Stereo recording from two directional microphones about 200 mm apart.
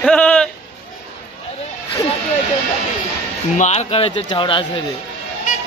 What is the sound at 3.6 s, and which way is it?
Speech, 35° left (ahead or behind).